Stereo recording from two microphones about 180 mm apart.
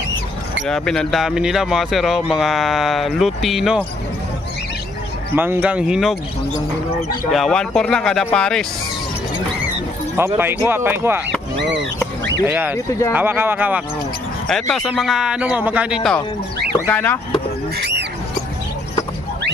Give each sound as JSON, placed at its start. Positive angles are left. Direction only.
{"t": 0.7, "sound": "speech", "side_deg": 5}
{"t": 5.3, "sound": "speech", "side_deg": -10}
{"t": 7.2, "sound": "speech", "side_deg": 0}
{"t": 10.1, "sound": "speech", "side_deg": -10}
{"t": 11.5, "sound": "speech", "side_deg": -80}
{"t": 12.4, "sound": "speech", "side_deg": -10}
{"t": 14.5, "sound": "speech", "side_deg": 5}
{"t": 17.7, "sound": "rodents", "side_deg": -70}